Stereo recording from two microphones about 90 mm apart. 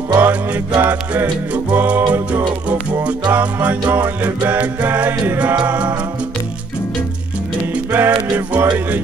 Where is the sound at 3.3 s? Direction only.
20° right (ahead or behind).